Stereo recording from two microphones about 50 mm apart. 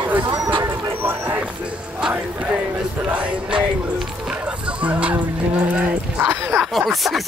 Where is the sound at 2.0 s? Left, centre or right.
Right.